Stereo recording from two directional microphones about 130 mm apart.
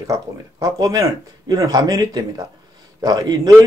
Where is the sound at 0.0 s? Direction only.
30° right (ahead or behind).